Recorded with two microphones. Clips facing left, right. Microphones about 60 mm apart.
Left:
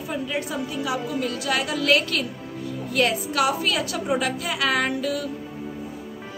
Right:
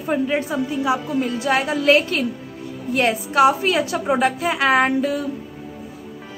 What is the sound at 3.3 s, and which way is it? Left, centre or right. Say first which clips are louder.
A woman's voice: right 11 dB; right.